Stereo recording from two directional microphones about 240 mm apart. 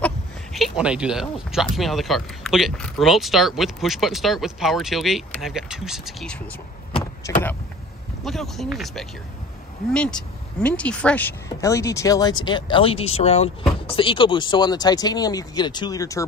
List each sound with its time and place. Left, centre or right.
0.0 s speech: centre
7.2 s speech: centre
8.2 s speech: centre